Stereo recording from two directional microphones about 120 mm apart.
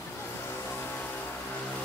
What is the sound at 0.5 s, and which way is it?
Music, 20° left (ahead or behind).